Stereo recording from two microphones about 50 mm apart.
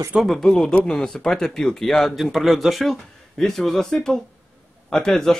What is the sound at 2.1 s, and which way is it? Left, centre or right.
Speech, centre.